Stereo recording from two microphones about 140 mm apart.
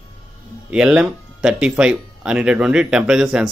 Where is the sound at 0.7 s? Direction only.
5° right (ahead or behind).